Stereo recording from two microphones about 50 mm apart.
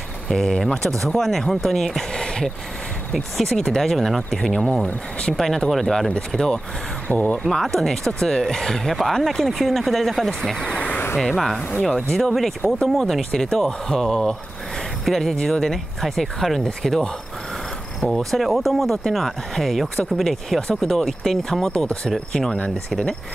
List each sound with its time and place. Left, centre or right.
0.3 s speech: centre
3.3 s speech: centre; by 7.2 s left
7.4 s speech: centre
10.8 s a sound: left
11.1 s speech: centre
15.3 s speech: centre
18.1 s speech: centre
21.7 s speech: left